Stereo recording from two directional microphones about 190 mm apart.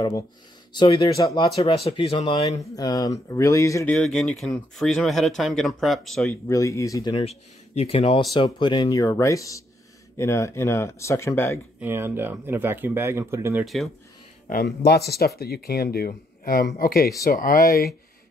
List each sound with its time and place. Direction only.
0.7 s speech: 25° left (ahead or behind)
3.9 s speech: centre (ahead or behind)
6.2 s speech: 15° left (ahead or behind)
11.8 s speech: 10° right (ahead or behind)
14.5 s speech: 55° left (ahead or behind)